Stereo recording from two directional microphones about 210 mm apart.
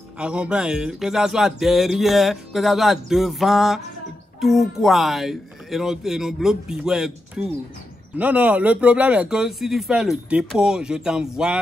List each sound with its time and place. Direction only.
0.2 s speech: 5° right (ahead or behind)